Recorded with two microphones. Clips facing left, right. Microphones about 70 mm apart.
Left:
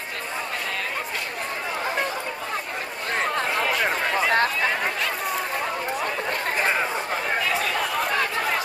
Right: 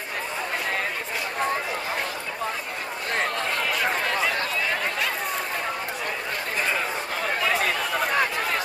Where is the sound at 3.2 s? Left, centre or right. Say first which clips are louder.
Left 3 dB; centre.